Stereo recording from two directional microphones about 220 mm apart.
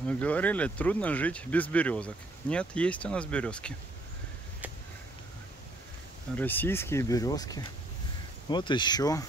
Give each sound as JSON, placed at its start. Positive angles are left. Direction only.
{"t": 0.0, "sound": "speech", "side_deg": 5}
{"t": 6.3, "sound": "speech", "side_deg": 10}